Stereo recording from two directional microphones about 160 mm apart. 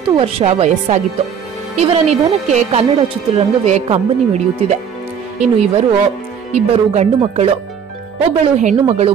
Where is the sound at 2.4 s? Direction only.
45° right (ahead or behind).